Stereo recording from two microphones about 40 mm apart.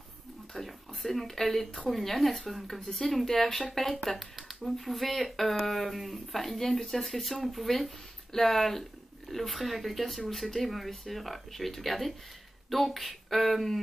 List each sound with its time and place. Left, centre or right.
0.6 s speech: centre